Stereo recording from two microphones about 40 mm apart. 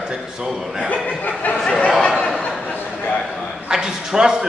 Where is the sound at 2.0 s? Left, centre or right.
Left.